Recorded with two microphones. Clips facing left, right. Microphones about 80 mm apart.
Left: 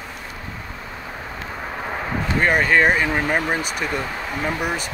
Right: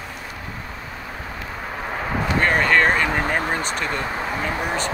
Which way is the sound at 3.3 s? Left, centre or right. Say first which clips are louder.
Left 1 dB; centre.